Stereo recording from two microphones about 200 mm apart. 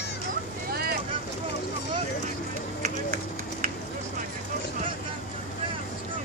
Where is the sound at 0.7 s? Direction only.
50° right (ahead or behind).